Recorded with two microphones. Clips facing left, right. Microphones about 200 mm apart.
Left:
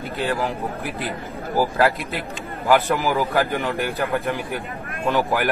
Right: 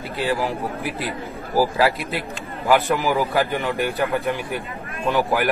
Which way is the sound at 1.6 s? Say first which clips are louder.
Right 1 dB; centre (ahead or behind).